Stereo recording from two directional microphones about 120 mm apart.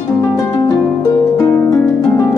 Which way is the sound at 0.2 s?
30° left (ahead or behind).